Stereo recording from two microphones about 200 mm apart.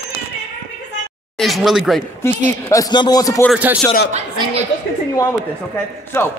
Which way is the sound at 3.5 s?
10° right (ahead or behind).